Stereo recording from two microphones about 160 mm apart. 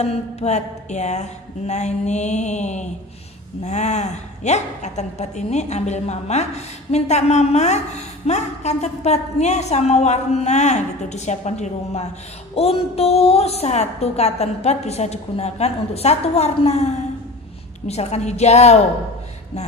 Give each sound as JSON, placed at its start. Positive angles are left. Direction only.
{"t": 0.0, "sound": "a woman's voice", "side_deg": 40}